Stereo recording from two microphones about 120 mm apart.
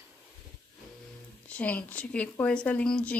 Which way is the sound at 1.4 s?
10° left (ahead or behind).